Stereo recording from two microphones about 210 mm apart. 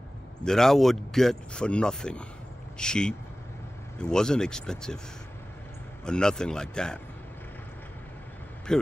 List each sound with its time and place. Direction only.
0.4 s speech: centre (ahead or behind)
6.0 s speech: 5° left (ahead or behind)
8.7 s speech: 5° left (ahead or behind)